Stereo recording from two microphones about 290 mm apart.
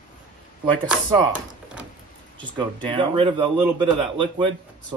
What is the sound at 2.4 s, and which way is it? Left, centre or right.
A man's voice, centre.